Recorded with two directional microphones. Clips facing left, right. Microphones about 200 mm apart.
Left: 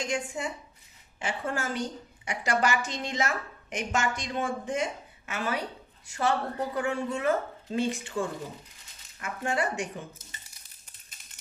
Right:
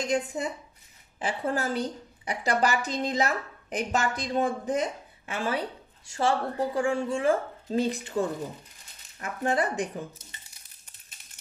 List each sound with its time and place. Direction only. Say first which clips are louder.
0.0 s a woman's voice: right 4 dB; 35° right (ahead or behind)